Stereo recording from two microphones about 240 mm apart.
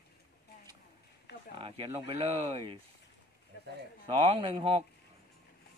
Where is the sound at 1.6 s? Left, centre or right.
Right.